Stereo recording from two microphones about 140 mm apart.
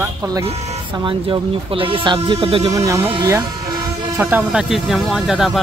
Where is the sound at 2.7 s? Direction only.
20° right (ahead or behind).